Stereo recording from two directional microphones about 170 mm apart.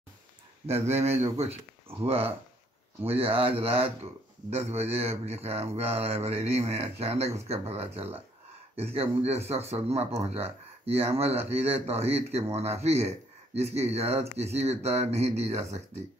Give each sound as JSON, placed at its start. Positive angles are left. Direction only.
{"t": 0.7, "sound": "speech", "side_deg": -40}
{"t": 3.1, "sound": "speech", "side_deg": -35}